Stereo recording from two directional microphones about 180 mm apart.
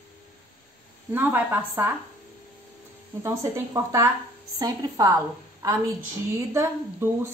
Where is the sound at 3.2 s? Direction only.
15° right (ahead or behind).